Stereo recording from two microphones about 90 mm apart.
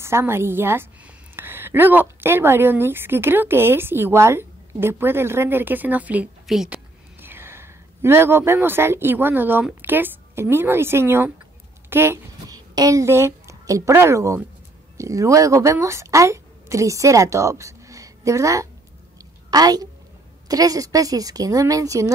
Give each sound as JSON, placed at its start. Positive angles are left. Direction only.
{"t": 0.0, "sound": "a woman's voice", "side_deg": -30}
{"t": 6.4, "sound": "a woman's voice", "side_deg": 0}
{"t": 6.7, "sound": "a sound", "side_deg": -25}
{"t": 9.8, "sound": "a woman's voice", "side_deg": -20}
{"t": 12.4, "sound": "a woman's voice", "side_deg": -45}